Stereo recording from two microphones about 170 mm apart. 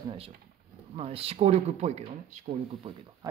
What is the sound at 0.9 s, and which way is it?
Speech, 35° right (ahead or behind).